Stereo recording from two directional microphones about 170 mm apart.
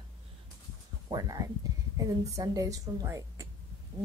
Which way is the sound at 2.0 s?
20° right (ahead or behind).